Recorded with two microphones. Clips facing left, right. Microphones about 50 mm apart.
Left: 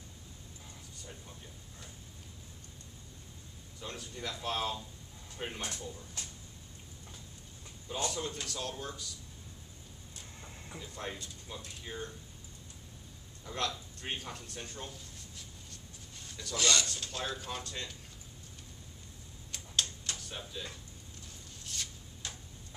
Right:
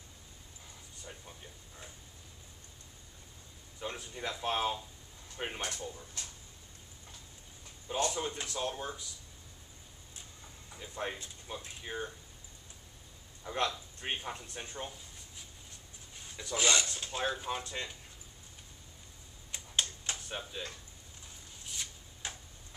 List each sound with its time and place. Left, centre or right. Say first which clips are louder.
3.8 s speech: right 2 dB; right
8.1 s speech: right 1 dB; right
10.8 s speech: right 3 dB; right
13.4 s speech: right 3 dB; right
19.5 s a sound: even; right
21.7 s rub: left 1 dB; centre
22.2 s tick-tock: right 2 dB; right